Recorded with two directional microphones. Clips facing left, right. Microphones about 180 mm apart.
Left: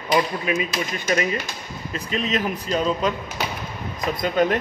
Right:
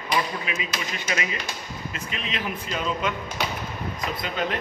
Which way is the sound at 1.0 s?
40° left (ahead or behind).